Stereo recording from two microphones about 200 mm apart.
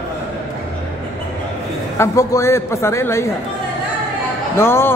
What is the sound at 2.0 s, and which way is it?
Speech, 15° left (ahead or behind).